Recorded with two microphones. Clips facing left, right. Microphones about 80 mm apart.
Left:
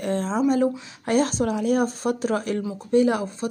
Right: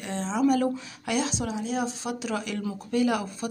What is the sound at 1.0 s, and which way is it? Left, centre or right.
Speech, left.